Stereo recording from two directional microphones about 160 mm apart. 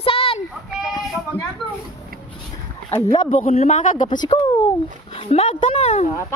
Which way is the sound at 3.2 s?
45° left (ahead or behind).